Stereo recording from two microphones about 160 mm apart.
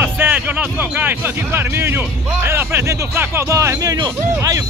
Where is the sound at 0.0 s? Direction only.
10° right (ahead or behind).